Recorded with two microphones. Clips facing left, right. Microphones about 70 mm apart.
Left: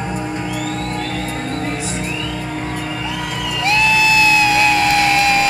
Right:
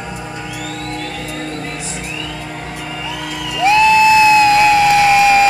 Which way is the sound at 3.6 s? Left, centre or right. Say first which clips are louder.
Right 6 dB; right.